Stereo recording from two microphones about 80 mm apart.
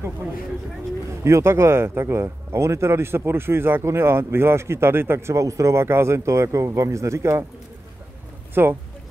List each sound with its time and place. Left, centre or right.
1.2 s speech: right
8.6 s speech: right